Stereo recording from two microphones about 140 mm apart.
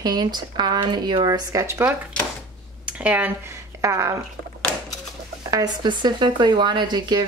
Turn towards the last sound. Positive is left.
turn(degrees=-30)  # may be behind; listen again after turning